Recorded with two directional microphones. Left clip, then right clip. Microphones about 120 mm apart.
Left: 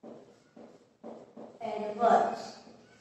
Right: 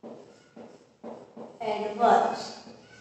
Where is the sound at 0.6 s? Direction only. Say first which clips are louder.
Right 5 dB; 25° right (ahead or behind).